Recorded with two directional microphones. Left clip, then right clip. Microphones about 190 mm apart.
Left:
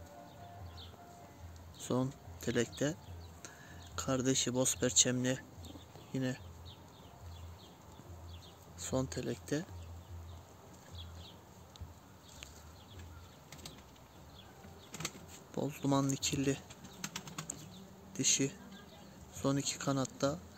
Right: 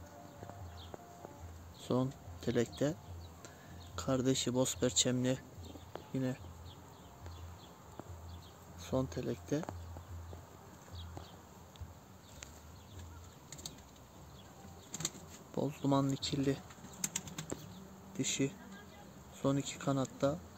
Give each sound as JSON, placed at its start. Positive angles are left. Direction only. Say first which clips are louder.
{"t": 1.8, "sound": "speech", "louder": "right 1 dB", "side_deg": -5}
{"t": 8.7, "sound": "speech", "louder": "even", "side_deg": 0}
{"t": 13.5, "sound": "a sound", "louder": "right 2 dB", "side_deg": 30}
{"t": 14.9, "sound": "a sound", "louder": "right 1 dB", "side_deg": 25}
{"t": 15.5, "sound": "speech", "louder": "right 1 dB", "side_deg": -5}
{"t": 17.0, "sound": "typing", "louder": "right 2 dB", "side_deg": 25}
{"t": 18.1, "sound": "speech", "louder": "left 3 dB", "side_deg": -5}